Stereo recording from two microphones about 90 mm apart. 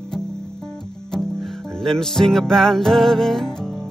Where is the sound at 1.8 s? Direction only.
5° left (ahead or behind).